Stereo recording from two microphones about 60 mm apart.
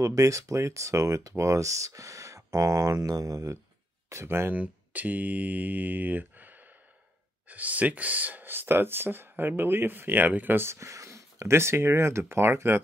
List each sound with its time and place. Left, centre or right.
0.0 s speech: right
4.1 s speech: right
4.6 s mantra: right
7.4 s speech: right
10.8 s speech: right